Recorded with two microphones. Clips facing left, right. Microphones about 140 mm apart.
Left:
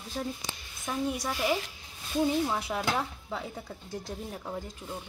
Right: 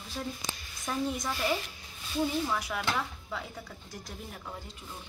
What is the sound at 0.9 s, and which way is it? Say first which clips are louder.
Speech: left 1 dB; 10° left (ahead or behind).